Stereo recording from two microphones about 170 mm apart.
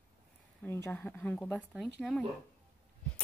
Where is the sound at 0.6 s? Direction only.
10° left (ahead or behind).